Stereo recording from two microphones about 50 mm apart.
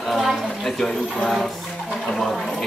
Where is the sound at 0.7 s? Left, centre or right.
Centre.